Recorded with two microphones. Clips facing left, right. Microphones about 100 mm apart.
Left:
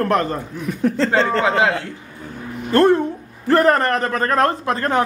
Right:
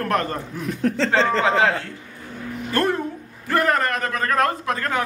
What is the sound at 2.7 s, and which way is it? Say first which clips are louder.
A man's voice: left 8 dB; 30° left (ahead or behind).